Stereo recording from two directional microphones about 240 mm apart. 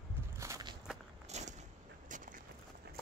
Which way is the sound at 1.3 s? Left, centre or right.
Right.